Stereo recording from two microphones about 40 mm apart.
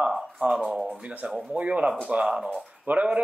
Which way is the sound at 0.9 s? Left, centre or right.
Right.